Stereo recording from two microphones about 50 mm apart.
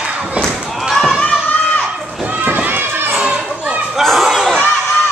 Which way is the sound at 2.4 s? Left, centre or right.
Right.